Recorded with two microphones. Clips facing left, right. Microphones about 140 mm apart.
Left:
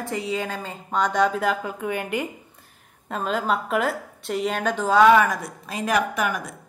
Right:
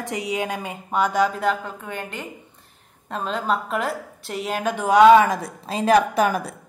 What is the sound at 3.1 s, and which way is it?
A woman's voice, centre (ahead or behind).